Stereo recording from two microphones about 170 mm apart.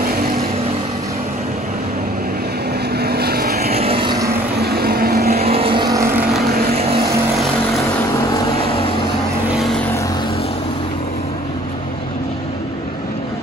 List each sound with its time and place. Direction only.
3.0 s vehicle: 70° right (ahead or behind)
3.7 s vehicle: 35° right (ahead or behind)
4.3 s vehicle: 65° right (ahead or behind)
5.4 s vehicle: 35° right (ahead or behind)
6.7 s vehicle: 35° right (ahead or behind)
9.5 s vehicle: centre (ahead or behind)